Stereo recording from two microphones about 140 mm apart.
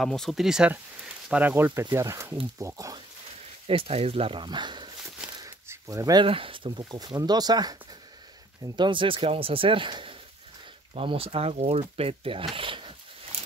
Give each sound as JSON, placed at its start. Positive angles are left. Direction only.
{"t": 0.0, "sound": "speech", "side_deg": 0}
{"t": 3.6, "sound": "speech", "side_deg": -45}
{"t": 5.4, "sound": "a sound", "side_deg": -20}
{"t": 6.2, "sound": "speech", "side_deg": -40}
{"t": 8.7, "sound": "speech", "side_deg": -35}